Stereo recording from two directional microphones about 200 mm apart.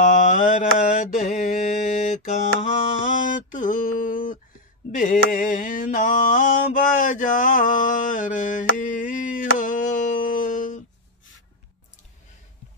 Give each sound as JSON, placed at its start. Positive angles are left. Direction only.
{"t": 0.0, "sound": "mantra", "side_deg": 40}